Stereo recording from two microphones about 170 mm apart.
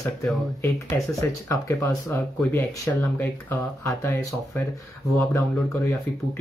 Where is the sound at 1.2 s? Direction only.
15° left (ahead or behind).